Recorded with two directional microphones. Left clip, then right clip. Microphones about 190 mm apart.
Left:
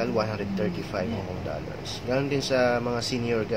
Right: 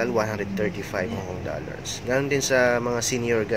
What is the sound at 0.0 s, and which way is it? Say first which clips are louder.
Speech: right 3 dB; 20° right (ahead or behind).